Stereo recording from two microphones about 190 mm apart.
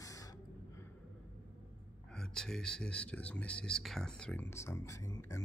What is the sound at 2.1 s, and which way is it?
Speech, 5° left (ahead or behind).